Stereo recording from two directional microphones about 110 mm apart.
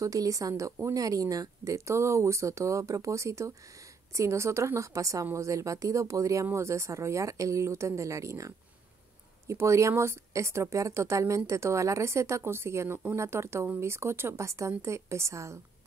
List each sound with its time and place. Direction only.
0.0 s a woman's voice: 30° right (ahead or behind)